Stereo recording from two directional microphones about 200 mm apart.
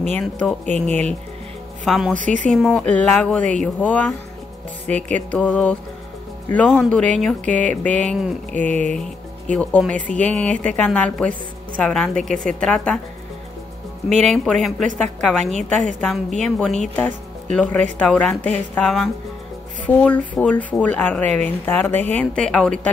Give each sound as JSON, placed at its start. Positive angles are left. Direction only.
{"t": 0.8, "sound": "speech", "side_deg": 5}
{"t": 2.1, "sound": "speech", "side_deg": -40}
{"t": 2.4, "sound": "speech", "side_deg": 0}
{"t": 4.8, "sound": "speech", "side_deg": -35}
{"t": 5.1, "sound": "speech", "side_deg": 5}
{"t": 14.2, "sound": "speech", "side_deg": 5}